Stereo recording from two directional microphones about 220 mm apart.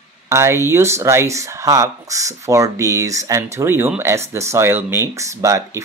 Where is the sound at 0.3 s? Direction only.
15° right (ahead or behind).